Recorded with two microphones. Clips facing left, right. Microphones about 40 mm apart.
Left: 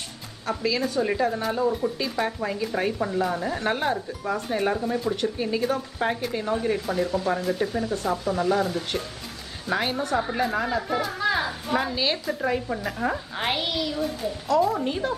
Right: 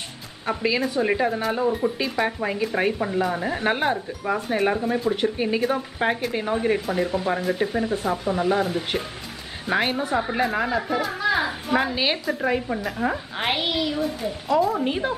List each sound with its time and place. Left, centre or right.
0.5 s a woman's voice: right; by 11.4 s centre
11.4 s a child's voice: centre